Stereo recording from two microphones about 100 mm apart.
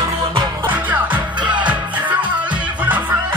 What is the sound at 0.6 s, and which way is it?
Music, 15° right (ahead or behind).